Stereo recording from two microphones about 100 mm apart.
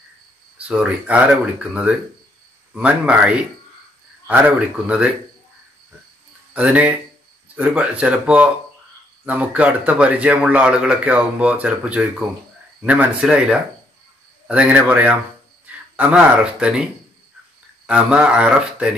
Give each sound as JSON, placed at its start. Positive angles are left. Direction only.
{"t": 0.6, "sound": "speech", "side_deg": -10}
{"t": 6.5, "sound": "speech", "side_deg": -15}